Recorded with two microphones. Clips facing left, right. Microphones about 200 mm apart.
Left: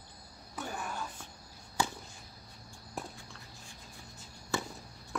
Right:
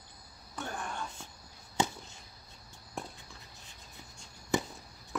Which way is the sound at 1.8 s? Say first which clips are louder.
Right 2 dB; 20° right (ahead or behind).